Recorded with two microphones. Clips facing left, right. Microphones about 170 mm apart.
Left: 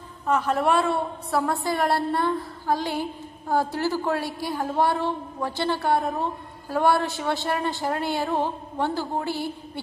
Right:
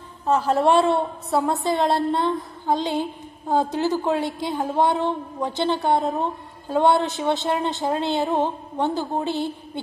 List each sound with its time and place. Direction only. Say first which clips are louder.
0.3 s a woman's voice: right 4 dB; 30° right (ahead or behind)